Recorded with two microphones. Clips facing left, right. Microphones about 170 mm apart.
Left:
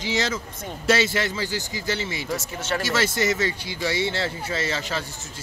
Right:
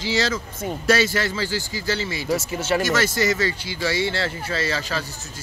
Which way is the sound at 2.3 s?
Centre (ahead or behind).